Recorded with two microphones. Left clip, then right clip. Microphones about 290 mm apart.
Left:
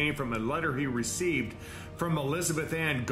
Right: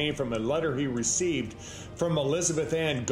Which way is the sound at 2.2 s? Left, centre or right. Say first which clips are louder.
Right 4 dB; centre.